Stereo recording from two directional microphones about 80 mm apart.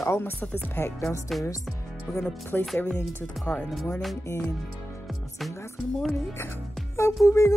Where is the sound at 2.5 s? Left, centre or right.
Left.